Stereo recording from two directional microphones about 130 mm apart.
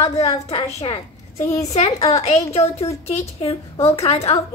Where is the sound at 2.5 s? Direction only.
50° left (ahead or behind).